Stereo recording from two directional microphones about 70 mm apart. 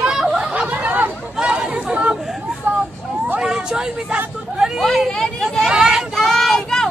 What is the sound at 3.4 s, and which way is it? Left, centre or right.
Vehicle, centre.